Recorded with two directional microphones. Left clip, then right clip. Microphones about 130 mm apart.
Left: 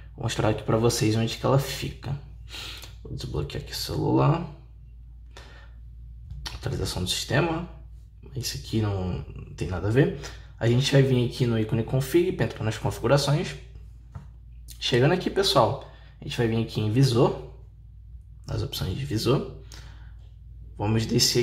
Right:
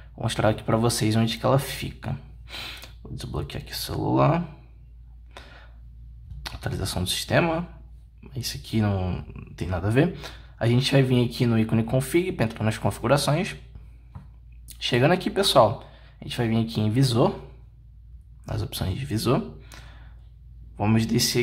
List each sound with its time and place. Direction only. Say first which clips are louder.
0.2 s speech: right 2 dB; 20° right (ahead or behind)
2.4 s speech: right 2 dB; 35° right (ahead or behind); by 4.3 s 20° right (ahead or behind)
5.3 s a sound: right 3 dB; 20° right (ahead or behind)
6.4 s speech: even; 20° right (ahead or behind)
8.8 s speech: right 2 dB; 30° right (ahead or behind)
9.6 s speech: even; 20° right (ahead or behind)
14.8 s speech: right 1 dB; 20° right (ahead or behind)
18.5 s speech: even; 25° right (ahead or behind)